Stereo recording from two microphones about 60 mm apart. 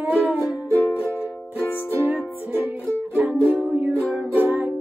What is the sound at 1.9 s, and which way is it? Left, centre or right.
Music, right.